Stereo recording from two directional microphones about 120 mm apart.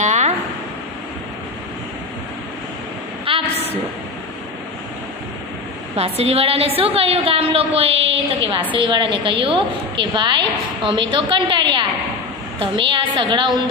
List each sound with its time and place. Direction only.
0.0 s a sound: 75° right (ahead or behind)
3.3 s train: 50° right (ahead or behind)
5.9 s a woman's voice: 60° right (ahead or behind); by 13.6 s 45° right (ahead or behind)